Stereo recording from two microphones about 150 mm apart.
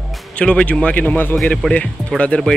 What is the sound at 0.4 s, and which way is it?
Speech, 5° left (ahead or behind).